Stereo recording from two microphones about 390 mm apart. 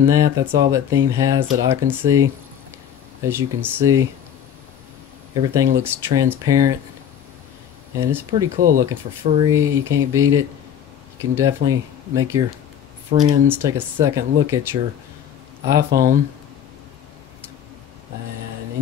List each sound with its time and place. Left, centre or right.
0.0 s speech: centre
3.3 s speech: centre
5.3 s speech: centre
8.0 s speech: centre
8.5 s speech: right
8.8 s speech: centre
15.9 s speech: right